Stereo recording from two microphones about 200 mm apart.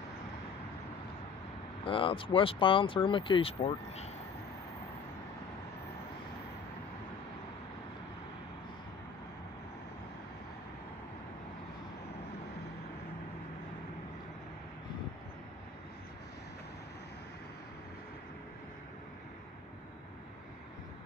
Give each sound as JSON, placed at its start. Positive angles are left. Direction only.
{"t": 1.9, "sound": "speech", "side_deg": 25}